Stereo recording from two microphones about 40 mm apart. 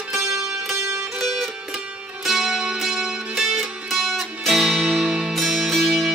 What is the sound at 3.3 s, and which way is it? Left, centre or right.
Music, centre.